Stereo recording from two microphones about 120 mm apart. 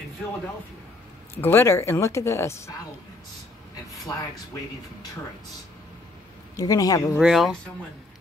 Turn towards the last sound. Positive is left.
turn(degrees=0)  # may be behind; listen again after turning